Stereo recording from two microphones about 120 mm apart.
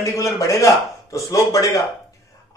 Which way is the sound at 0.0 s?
25° left (ahead or behind).